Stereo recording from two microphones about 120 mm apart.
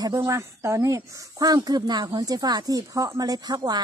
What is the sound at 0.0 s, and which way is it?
Speech, 25° right (ahead or behind).